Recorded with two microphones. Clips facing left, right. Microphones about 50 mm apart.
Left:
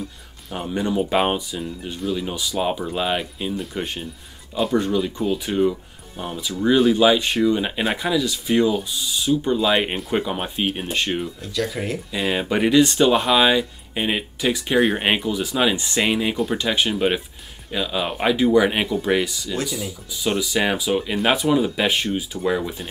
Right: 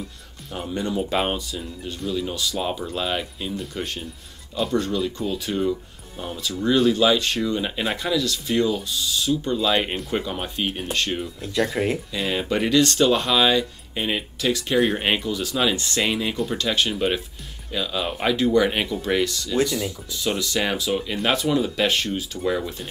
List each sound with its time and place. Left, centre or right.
0.6 s speech: centre
11.6 s speech: centre
12.1 s speech: centre